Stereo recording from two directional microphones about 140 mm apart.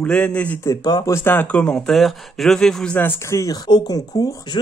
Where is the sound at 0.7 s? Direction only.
25° left (ahead or behind).